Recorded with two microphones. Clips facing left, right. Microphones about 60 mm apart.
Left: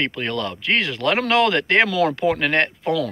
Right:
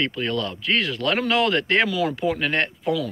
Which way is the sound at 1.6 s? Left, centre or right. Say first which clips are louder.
Left 3 dB; left.